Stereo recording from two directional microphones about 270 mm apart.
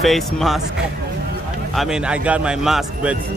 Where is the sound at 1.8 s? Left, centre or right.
Centre.